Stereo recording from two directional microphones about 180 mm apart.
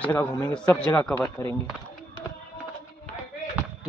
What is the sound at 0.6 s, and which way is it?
Speech, 5° left (ahead or behind).